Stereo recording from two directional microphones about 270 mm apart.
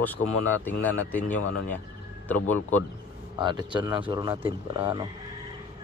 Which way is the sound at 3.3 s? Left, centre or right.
Centre.